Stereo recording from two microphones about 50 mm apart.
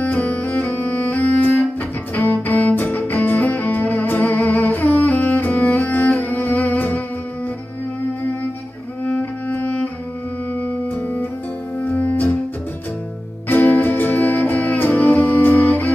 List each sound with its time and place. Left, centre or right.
0.0 s music: left
9.0 s cello: left
11.9 s music: left
13.5 s music: left